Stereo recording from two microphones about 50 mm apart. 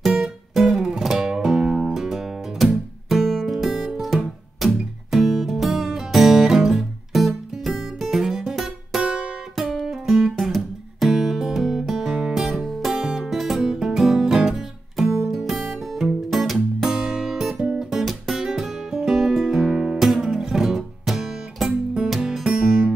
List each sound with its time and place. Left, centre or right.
0.6 s music: centre
9.0 s music: right
9.8 s music: centre
16.8 s music: centre